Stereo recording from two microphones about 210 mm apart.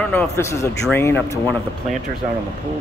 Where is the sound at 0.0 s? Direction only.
5° left (ahead or behind).